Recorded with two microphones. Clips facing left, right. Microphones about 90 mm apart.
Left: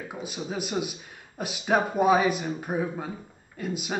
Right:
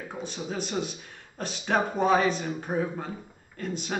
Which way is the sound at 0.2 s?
10° left (ahead or behind).